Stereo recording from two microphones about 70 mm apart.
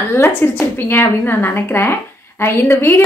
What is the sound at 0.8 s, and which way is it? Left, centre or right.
A woman's voice, left.